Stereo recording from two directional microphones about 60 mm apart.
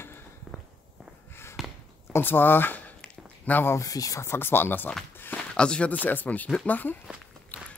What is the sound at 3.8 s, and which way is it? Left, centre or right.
Speech, left.